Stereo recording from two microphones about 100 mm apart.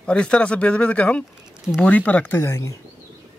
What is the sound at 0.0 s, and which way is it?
Speech, 10° left (ahead or behind).